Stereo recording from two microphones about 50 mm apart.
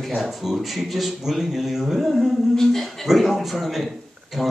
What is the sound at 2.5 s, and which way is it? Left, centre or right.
Speech, centre.